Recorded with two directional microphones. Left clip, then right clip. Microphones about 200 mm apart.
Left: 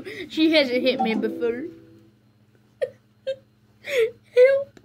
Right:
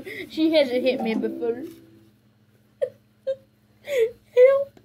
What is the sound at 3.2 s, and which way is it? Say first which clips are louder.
Wail: right 1 dB; 25° left (ahead or behind).